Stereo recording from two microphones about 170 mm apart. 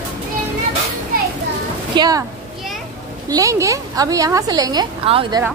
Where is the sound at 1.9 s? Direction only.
25° right (ahead or behind).